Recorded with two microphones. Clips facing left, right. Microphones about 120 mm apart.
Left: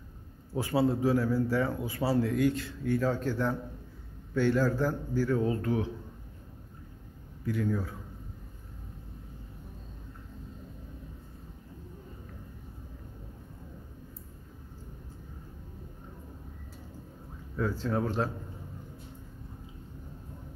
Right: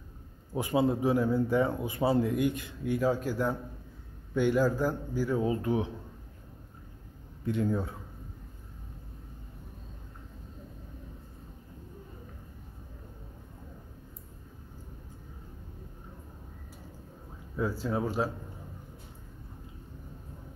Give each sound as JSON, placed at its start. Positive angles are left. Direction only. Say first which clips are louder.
{"t": 0.5, "sound": "speech", "louder": "even", "side_deg": -15}
{"t": 7.4, "sound": "a man's voice", "louder": "right 1 dB", "side_deg": -25}
{"t": 17.6, "sound": "speech", "louder": "even", "side_deg": -10}